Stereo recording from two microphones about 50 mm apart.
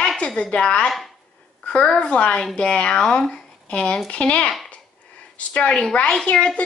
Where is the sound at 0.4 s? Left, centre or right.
Left.